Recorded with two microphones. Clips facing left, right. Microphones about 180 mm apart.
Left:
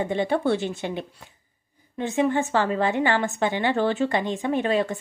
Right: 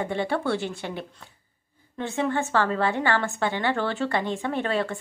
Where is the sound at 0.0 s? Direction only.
20° left (ahead or behind).